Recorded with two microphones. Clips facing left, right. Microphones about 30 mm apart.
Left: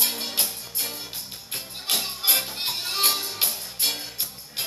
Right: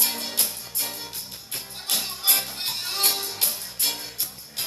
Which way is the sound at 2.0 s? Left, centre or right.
Centre.